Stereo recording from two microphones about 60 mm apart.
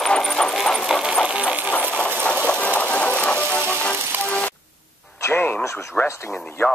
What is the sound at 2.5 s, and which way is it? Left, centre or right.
Music, left.